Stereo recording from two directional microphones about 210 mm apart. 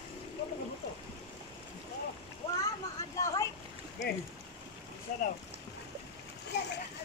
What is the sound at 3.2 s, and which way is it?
Boat, 15° left (ahead or behind).